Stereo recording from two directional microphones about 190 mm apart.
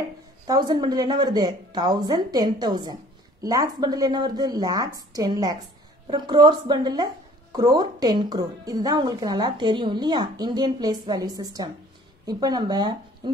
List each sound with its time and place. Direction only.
0.5 s speech: 20° right (ahead or behind)